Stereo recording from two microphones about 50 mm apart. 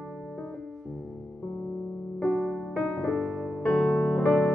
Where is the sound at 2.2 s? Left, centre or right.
Centre.